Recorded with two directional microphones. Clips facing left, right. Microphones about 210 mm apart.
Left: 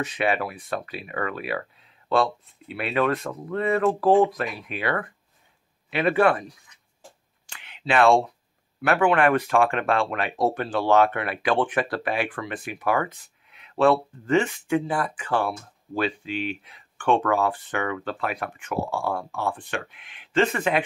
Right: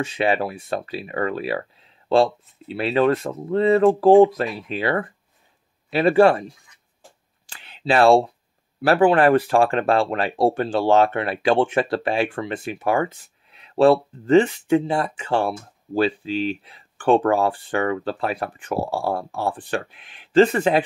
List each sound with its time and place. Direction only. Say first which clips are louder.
0.0 s speech: right 4 dB; 30° right (ahead or behind)
7.4 s a sound: right 5 dB; 35° right (ahead or behind)
8.8 s speech: right 4 dB; 35° right (ahead or behind)